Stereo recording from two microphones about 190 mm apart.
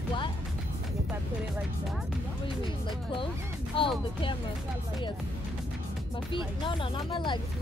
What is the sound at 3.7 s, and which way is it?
Speech, 30° left (ahead or behind).